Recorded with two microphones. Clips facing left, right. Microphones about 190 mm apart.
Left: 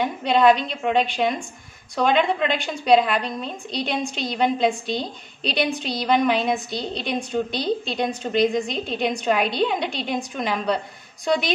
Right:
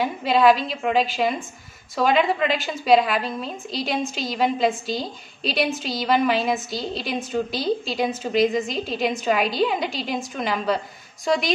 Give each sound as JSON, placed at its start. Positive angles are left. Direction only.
{"t": 0.0, "sound": "a woman's voice", "side_deg": -5}